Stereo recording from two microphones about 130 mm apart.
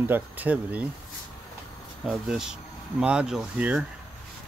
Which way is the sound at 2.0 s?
5° right (ahead or behind).